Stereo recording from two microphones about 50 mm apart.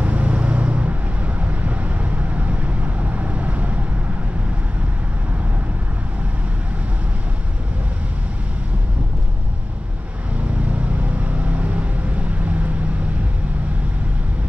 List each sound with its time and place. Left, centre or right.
0.0 s vehicle: right
11.4 s vehicle: right